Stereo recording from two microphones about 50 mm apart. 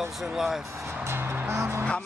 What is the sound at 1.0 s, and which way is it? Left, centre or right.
Music, right.